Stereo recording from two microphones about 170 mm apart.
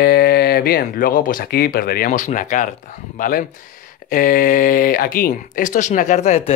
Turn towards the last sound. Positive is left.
turn(degrees=45)  # may be behind; listen again after turning